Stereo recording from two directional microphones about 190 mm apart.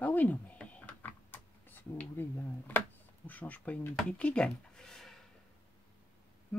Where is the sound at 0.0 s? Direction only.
10° left (ahead or behind).